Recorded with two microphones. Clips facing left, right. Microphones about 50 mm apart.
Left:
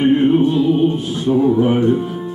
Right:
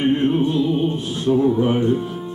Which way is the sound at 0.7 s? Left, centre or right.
Centre.